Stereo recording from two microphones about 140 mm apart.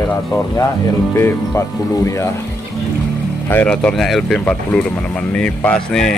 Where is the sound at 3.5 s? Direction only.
10° left (ahead or behind).